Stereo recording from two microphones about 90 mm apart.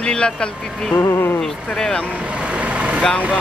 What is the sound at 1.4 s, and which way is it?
Speech, 5° left (ahead or behind).